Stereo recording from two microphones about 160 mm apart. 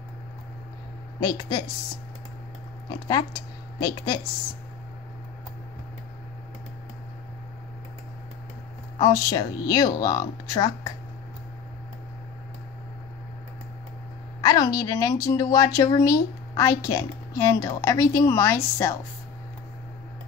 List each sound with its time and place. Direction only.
1.2 s speech: 25° left (ahead or behind)
3.8 s speech: 20° left (ahead or behind)
9.0 s speech: 25° left (ahead or behind)
14.4 s speech: 25° left (ahead or behind)